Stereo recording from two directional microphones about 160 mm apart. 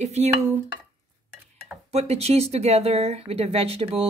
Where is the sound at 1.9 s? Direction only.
40° right (ahead or behind).